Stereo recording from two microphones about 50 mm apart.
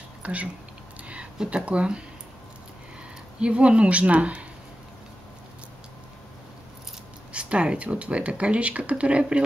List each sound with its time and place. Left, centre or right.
0.2 s speech: right
3.3 s speech: right
7.3 s speech: right